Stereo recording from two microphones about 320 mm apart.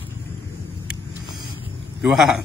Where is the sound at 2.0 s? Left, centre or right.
Centre.